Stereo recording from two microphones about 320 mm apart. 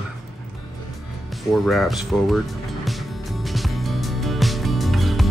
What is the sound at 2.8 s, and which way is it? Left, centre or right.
Music, centre.